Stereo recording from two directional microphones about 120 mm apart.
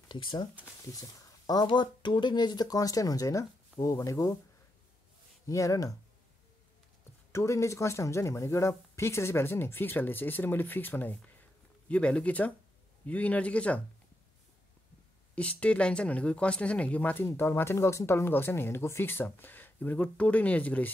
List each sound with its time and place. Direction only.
0.1 s speech: 40° left (ahead or behind)
5.5 s speech: 25° left (ahead or behind)
7.3 s speech: 25° left (ahead or behind)
15.3 s speech: 10° left (ahead or behind)